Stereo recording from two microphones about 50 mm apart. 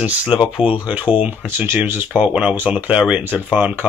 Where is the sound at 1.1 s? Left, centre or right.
Left.